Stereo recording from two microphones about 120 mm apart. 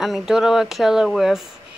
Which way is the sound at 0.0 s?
5° right (ahead or behind).